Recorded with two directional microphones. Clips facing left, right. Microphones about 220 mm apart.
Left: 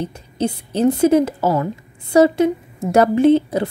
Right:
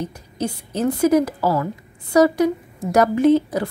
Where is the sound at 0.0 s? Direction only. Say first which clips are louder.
Left 4 dB; 30° left (ahead or behind).